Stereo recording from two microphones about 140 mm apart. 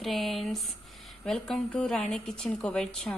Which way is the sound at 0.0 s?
Centre (ahead or behind).